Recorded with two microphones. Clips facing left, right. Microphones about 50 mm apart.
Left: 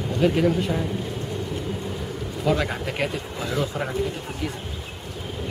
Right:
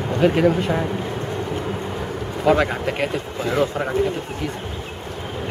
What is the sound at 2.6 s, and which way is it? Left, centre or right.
Speech, centre.